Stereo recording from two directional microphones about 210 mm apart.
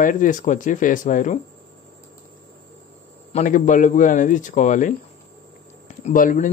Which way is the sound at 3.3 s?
35° left (ahead or behind).